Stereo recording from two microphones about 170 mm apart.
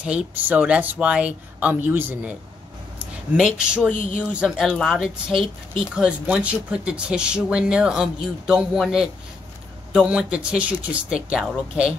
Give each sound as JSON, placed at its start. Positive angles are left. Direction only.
{"t": 0.0, "sound": "speech", "side_deg": -10}
{"t": 3.3, "sound": "speech", "side_deg": -5}
{"t": 3.9, "sound": "speech", "side_deg": 50}
{"t": 4.2, "sound": "speech", "side_deg": -5}